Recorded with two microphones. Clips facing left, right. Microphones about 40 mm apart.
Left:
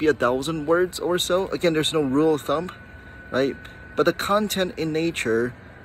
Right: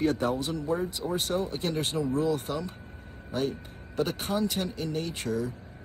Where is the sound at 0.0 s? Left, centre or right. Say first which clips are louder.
Left 7 dB; left.